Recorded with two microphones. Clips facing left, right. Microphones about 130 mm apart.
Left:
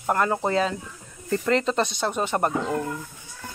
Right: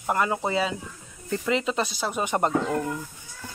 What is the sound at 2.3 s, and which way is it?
Speech, 20° right (ahead or behind).